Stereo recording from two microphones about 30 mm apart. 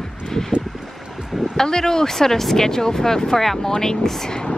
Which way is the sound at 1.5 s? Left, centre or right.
Centre.